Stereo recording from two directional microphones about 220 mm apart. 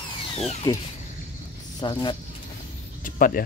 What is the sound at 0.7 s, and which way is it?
Speech, 20° left (ahead or behind).